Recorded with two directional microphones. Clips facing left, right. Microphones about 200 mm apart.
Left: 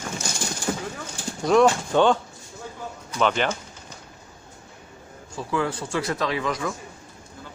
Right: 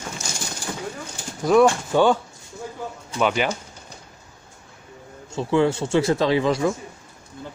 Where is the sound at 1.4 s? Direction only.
5° right (ahead or behind).